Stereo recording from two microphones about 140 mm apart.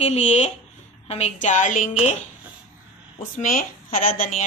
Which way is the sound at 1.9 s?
55° left (ahead or behind).